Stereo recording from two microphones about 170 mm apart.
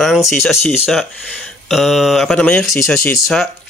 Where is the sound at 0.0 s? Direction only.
Centre (ahead or behind).